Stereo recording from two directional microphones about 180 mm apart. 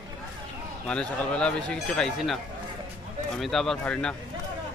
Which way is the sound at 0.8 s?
5° left (ahead or behind).